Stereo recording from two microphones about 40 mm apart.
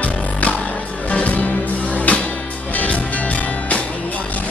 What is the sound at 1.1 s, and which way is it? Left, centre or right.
Music, left.